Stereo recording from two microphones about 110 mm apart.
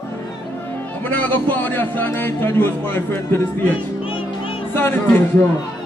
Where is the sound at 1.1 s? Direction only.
15° left (ahead or behind).